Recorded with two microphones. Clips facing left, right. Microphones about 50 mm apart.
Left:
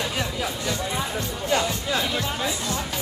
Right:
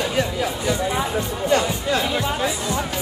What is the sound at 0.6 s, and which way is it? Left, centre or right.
Music, right.